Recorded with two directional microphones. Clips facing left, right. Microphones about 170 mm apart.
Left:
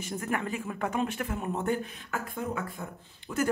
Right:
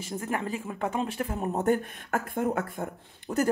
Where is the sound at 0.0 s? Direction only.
25° right (ahead or behind).